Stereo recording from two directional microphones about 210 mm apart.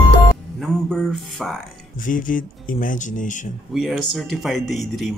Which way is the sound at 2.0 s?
40° left (ahead or behind).